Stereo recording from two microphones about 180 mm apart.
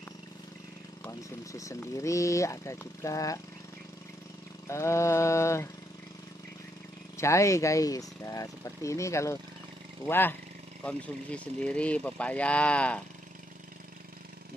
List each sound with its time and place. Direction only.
1.0 s speech: 15° left (ahead or behind)
4.6 s speech: 15° left (ahead or behind)
7.2 s speech: 15° left (ahead or behind)